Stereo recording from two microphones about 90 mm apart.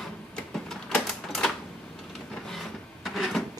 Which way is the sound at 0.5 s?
5° left (ahead or behind).